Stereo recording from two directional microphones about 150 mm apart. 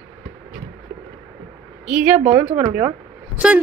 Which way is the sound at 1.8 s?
5° right (ahead or behind).